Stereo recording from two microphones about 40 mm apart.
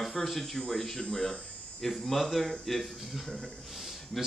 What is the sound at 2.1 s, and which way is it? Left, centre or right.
Speech, centre.